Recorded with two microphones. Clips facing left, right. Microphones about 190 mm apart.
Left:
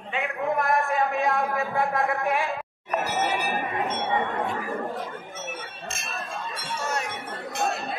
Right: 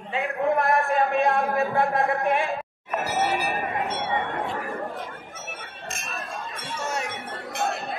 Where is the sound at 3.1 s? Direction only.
Centre (ahead or behind).